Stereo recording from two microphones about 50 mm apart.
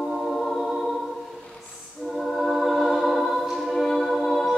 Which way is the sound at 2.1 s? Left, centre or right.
Centre.